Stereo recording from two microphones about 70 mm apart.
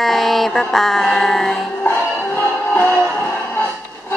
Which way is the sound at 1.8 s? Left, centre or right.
Left.